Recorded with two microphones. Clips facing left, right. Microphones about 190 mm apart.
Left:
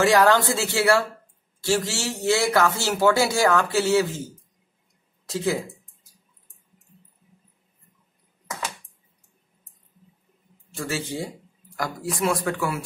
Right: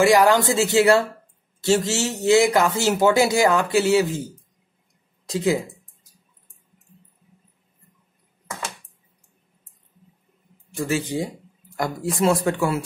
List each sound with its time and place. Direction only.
0.0 s a man's voice: 10° right (ahead or behind)
10.7 s speech: 15° right (ahead or behind)